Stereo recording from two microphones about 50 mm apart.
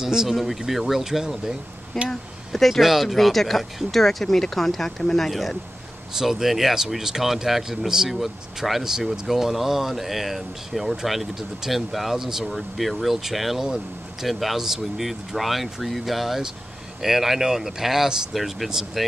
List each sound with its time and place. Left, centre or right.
0.0 s speech: centre
2.0 s speech: centre
6.1 s speech: centre